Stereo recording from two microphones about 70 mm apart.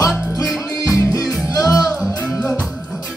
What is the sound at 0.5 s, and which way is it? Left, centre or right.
Music, left.